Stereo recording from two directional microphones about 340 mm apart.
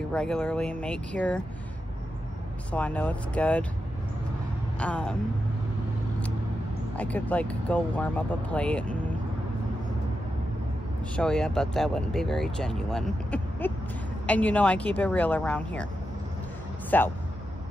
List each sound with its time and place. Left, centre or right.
0.1 s speech: centre
2.7 s speech: centre
4.7 s speech: centre
7.0 s speech: centre
11.1 s speech: centre
16.9 s speech: centre